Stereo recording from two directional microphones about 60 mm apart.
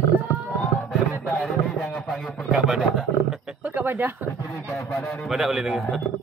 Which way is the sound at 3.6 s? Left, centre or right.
Right.